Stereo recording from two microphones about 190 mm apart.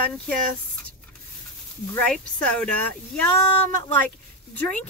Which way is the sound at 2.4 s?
5° left (ahead or behind).